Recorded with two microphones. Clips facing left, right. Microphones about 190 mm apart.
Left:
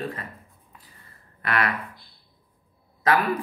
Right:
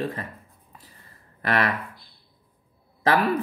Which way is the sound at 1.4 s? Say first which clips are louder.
Right 2 dB; 35° right (ahead or behind).